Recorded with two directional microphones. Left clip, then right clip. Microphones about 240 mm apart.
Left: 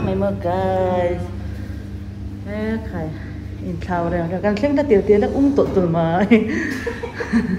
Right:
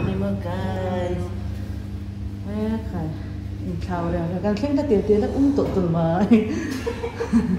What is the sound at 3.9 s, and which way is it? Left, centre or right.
Speech, centre.